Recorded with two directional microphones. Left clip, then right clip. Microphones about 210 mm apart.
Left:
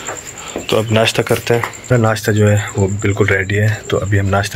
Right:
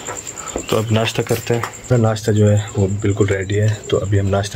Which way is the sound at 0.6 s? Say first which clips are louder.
Left 5 dB; 10° right (ahead or behind).